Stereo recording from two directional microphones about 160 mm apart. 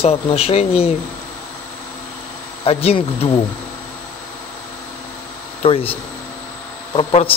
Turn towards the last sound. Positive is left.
turn(degrees=35)  # may be behind; listen again after turning